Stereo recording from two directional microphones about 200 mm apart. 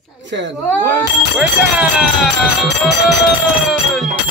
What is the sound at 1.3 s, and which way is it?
Speech, 5° right (ahead or behind).